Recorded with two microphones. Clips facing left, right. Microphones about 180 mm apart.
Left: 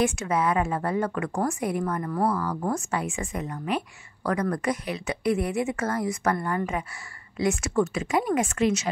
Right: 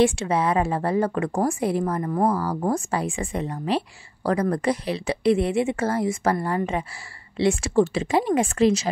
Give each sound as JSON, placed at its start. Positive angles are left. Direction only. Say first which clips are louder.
{"t": 0.0, "sound": "speech", "louder": "right 4 dB", "side_deg": -30}
{"t": 2.2, "sound": "speech", "louder": "right 3 dB", "side_deg": -35}